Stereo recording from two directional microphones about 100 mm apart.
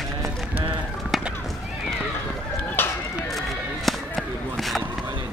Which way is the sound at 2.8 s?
20° left (ahead or behind).